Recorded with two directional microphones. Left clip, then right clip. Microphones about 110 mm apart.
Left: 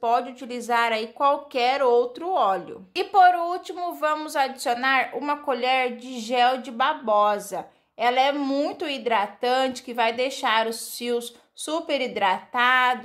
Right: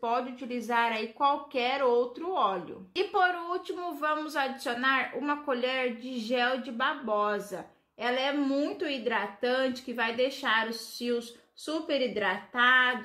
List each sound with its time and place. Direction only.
0.0 s speech: 35° left (ahead or behind)